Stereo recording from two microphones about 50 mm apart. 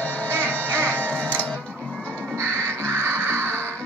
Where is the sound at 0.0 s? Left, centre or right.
Left.